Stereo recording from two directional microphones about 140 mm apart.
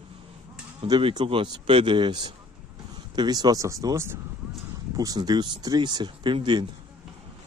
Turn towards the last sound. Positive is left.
turn(degrees=-35)  # may be behind; listen again after turning